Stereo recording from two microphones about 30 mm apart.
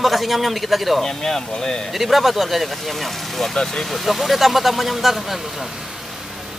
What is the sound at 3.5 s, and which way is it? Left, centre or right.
Speech, centre.